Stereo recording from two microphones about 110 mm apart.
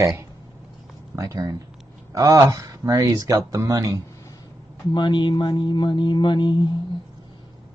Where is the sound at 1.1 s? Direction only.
30° right (ahead or behind).